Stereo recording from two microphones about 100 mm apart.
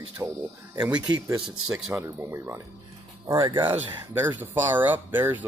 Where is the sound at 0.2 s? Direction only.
20° right (ahead or behind).